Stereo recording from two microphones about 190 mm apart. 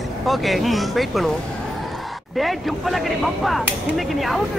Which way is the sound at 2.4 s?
Centre (ahead or behind).